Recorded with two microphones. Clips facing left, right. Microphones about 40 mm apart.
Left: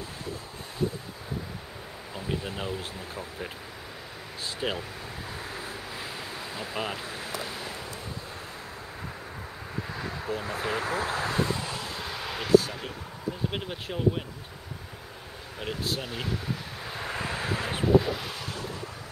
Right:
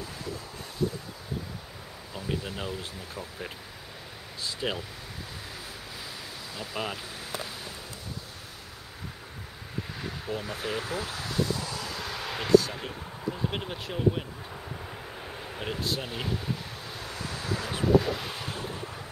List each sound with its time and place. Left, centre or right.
0.0 s wind: left
2.1 s speech: centre
4.6 s speech: centre
6.5 s speech: left
10.4 s vehicle: left
11.8 s vehicle: centre
13.5 s speech: centre
15.6 s speech: centre
17.0 s vehicle: left
17.8 s waves: centre
18.6 s wind noise: right